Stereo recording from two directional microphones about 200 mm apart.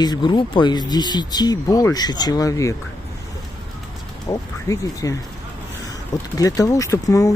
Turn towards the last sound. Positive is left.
turn(degrees=15)  # may be behind; listen again after turning